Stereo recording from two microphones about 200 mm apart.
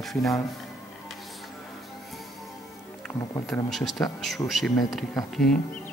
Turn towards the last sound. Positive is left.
turn(degrees=0)  # may be behind; listen again after turning